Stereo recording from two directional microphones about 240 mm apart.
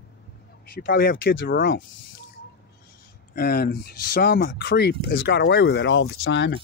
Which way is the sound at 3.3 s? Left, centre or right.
Left.